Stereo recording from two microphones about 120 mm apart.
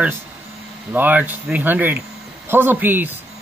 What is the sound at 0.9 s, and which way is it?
Speech, 15° right (ahead or behind).